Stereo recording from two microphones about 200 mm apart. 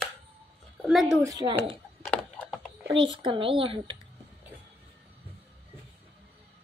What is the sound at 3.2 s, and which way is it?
Speech, 25° right (ahead or behind).